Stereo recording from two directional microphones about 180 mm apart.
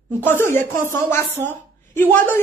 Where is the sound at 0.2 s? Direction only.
10° left (ahead or behind).